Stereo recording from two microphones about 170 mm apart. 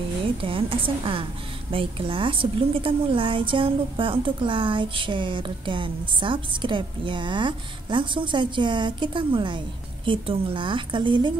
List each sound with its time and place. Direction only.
0.4 s a woman's voice: 30° right (ahead or behind)